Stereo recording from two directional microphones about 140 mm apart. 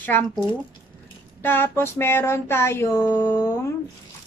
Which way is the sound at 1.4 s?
15° left (ahead or behind).